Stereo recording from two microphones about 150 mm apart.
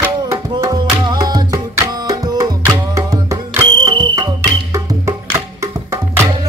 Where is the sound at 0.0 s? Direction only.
20° right (ahead or behind).